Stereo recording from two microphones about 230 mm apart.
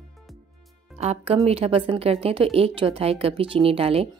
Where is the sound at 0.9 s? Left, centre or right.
Right.